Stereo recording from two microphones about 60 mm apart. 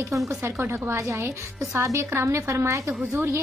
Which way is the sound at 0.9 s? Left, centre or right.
Right.